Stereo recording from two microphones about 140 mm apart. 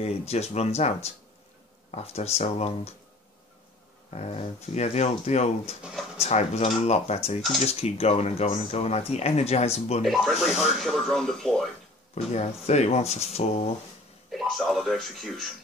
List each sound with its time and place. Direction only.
0.0 s speech: 50° left (ahead or behind)
4.1 s speech: 50° left (ahead or behind)
5.8 s speech: 5° right (ahead or behind)
6.1 s speech: 50° left (ahead or behind)
10.0 s speech: centre (ahead or behind)
12.4 s speech: 50° left (ahead or behind)
14.3 s speech: centre (ahead or behind)